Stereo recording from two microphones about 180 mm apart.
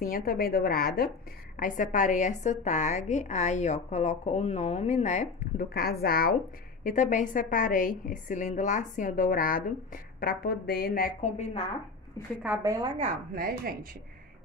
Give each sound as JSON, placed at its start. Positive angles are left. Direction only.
{"t": 0.0, "sound": "a woman's voice", "side_deg": 55}
{"t": 1.6, "sound": "a woman's voice", "side_deg": 45}
{"t": 6.8, "sound": "a woman's voice", "side_deg": 45}
{"t": 12.4, "sound": "a woman's voice", "side_deg": -20}
{"t": 13.3, "sound": "speech", "side_deg": -55}